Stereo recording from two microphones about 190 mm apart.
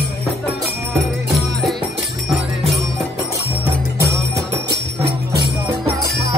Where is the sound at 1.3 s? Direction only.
Centre (ahead or behind).